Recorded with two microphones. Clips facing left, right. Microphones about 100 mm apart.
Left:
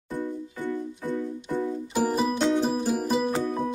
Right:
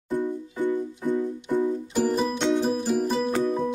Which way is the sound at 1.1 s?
15° right (ahead or behind).